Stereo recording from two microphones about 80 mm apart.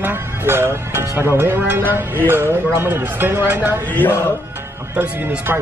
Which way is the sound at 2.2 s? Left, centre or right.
Right.